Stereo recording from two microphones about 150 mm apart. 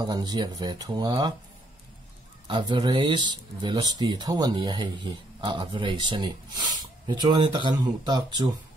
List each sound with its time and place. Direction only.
0.0 s speech: 25° right (ahead or behind)
2.4 s speech: 30° right (ahead or behind)